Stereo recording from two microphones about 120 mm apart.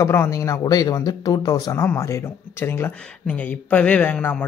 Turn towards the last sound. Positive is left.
turn(degrees=15)  # may be behind; listen again after turning